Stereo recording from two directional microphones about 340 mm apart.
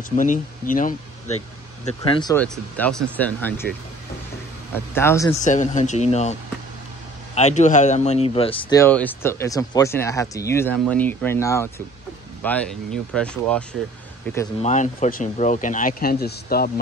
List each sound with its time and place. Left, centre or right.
0.1 s speech: left
2.0 s a man's voice: centre
4.7 s a man's voice: centre
5.4 s speech: left
7.3 s a man's voice: centre
14.7 s speech: left